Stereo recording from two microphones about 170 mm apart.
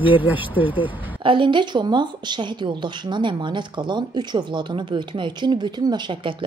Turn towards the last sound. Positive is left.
turn(degrees=-25)  # may be behind; listen again after turning